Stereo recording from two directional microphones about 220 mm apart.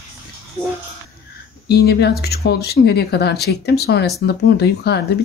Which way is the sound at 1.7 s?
50° left (ahead or behind).